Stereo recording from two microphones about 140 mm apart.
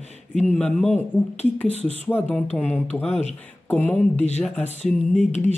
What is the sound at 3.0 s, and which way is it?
Speech, 50° left (ahead or behind).